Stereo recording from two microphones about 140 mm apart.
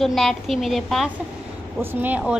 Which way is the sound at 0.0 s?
Centre (ahead or behind).